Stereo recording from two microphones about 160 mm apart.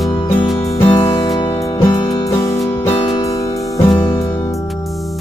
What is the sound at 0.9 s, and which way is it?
Music, 20° left (ahead or behind).